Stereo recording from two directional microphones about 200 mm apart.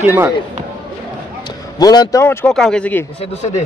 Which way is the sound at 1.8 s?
20° left (ahead or behind).